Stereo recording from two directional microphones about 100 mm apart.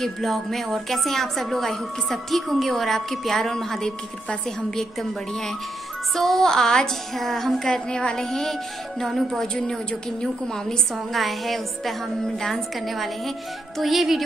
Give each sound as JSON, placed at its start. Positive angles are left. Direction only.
{"t": 0.0, "sound": "a woman's voice", "side_deg": 0}
{"t": 6.1, "sound": "a woman's voice", "side_deg": 5}